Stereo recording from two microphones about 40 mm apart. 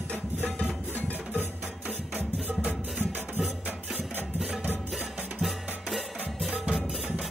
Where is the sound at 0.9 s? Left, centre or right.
Left.